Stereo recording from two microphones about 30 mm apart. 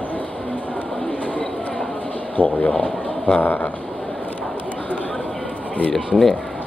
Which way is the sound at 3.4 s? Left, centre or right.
Left.